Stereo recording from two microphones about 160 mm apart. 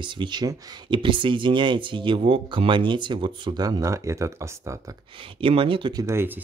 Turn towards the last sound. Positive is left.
turn(degrees=-15)  # may be behind; listen again after turning